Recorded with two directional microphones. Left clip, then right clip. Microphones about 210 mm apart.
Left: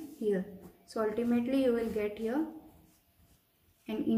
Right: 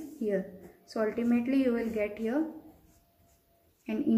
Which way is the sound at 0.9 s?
10° right (ahead or behind).